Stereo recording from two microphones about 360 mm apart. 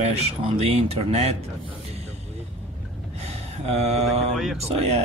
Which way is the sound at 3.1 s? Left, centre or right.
Centre.